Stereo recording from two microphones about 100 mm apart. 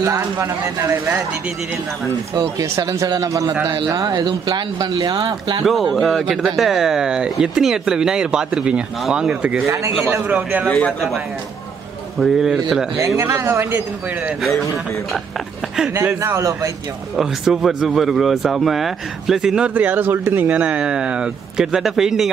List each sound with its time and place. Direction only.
0.0 s speech: 30° right (ahead or behind)
2.3 s speech: 35° right (ahead or behind)
5.6 s speech: centre (ahead or behind)
10.7 s speech: 5° left (ahead or behind)
12.2 s speech: 5° right (ahead or behind)
12.9 s speech: 30° right (ahead or behind)
15.9 s speech: 25° right (ahead or behind)
17.2 s speech: 5° right (ahead or behind)